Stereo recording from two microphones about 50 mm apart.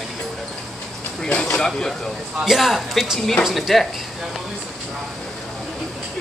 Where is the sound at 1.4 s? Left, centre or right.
Centre.